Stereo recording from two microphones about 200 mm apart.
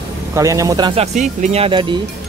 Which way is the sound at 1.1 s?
35° right (ahead or behind).